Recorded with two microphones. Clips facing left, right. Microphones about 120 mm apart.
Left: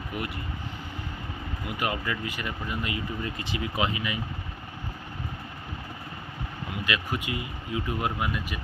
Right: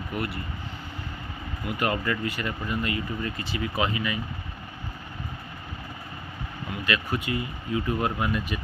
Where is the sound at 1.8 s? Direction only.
10° left (ahead or behind).